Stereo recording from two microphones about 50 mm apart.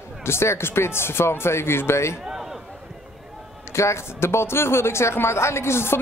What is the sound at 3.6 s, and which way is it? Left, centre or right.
Speech, left.